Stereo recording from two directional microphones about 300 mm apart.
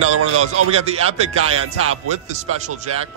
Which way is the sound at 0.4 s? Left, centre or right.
Centre.